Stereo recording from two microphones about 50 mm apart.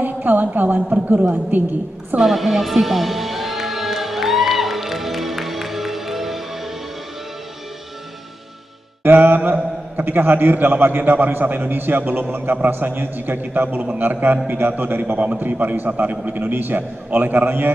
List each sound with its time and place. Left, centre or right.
0.0 s a woman's voice: right
2.1 s music: centre
9.0 s a man's voice: right